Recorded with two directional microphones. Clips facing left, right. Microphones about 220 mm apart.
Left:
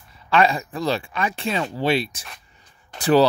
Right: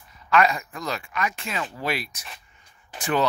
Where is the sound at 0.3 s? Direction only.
30° left (ahead or behind).